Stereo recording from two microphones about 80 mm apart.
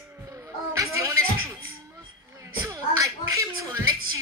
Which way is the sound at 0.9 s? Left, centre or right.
Right.